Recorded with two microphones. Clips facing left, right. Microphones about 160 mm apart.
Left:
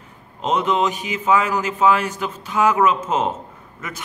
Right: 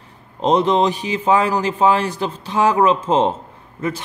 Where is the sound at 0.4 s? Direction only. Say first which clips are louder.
Right 4 dB; 35° right (ahead or behind).